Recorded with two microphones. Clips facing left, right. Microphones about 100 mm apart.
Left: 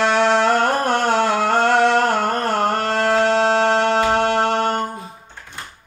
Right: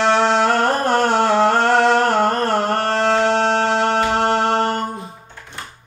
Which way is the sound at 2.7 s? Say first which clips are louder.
Right 1 dB; 15° left (ahead or behind).